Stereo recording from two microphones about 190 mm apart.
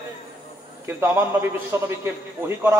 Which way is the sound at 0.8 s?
10° right (ahead or behind).